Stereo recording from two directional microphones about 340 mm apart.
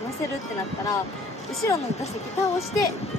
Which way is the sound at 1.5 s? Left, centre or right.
Centre.